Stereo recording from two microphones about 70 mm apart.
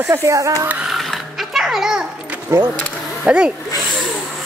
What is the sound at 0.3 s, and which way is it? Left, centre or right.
Speech, right.